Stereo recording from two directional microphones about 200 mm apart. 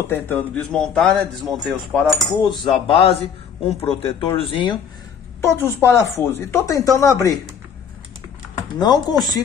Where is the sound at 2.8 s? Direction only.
25° left (ahead or behind).